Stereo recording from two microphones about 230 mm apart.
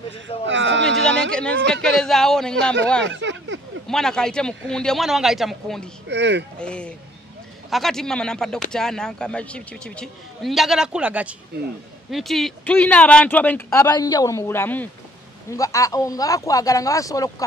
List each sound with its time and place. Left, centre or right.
0.5 s a sound: right
1.3 s a man's voice: centre
2.6 s speech: right
3.0 s a sound: right
3.8 s a man's voice: centre
6.0 s speech: right
6.6 s a man's voice: centre